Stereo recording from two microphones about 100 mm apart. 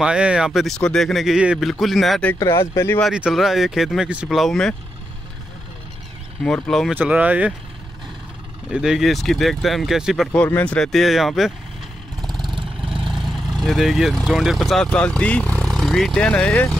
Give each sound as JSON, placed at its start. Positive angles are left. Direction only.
{"t": 0.0, "sound": "speech", "side_deg": -10}
{"t": 2.3, "sound": "speech", "side_deg": 30}
{"t": 3.1, "sound": "speech", "side_deg": -5}
{"t": 4.4, "sound": "speech", "side_deg": 5}
{"t": 6.4, "sound": "speech", "side_deg": 5}
{"t": 6.9, "sound": "speech", "side_deg": -15}
{"t": 8.6, "sound": "speech", "side_deg": -5}
{"t": 10.3, "sound": "speech", "side_deg": 15}
{"t": 12.2, "sound": "vehicle", "side_deg": 0}
{"t": 12.8, "sound": "speech", "side_deg": -5}